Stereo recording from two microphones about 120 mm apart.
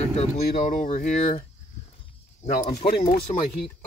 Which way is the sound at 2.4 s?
85° left.